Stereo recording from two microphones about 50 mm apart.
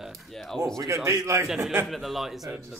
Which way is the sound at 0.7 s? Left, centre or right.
Right.